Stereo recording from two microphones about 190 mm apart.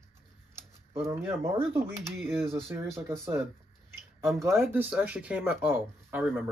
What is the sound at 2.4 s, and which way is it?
Speech, 30° right (ahead or behind).